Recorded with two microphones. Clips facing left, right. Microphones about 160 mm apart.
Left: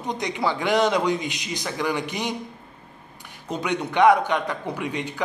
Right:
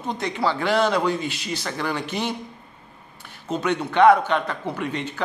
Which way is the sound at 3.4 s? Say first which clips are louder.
Right 2 dB; 15° left (ahead or behind).